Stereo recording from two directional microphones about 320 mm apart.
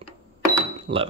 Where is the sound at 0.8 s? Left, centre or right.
Centre.